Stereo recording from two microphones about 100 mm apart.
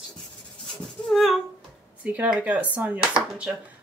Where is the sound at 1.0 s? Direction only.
Centre (ahead or behind).